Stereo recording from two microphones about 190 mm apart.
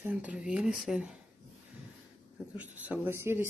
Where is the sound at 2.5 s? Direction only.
10° right (ahead or behind).